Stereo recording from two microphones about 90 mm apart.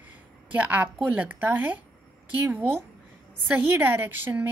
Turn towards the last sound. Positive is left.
turn(degrees=-20)  # may be behind; listen again after turning